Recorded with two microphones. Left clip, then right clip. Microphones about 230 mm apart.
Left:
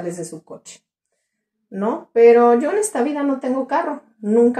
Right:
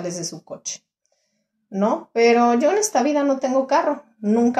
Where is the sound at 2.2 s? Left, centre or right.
Right.